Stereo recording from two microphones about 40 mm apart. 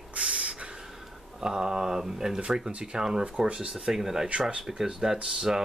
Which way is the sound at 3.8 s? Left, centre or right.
Centre.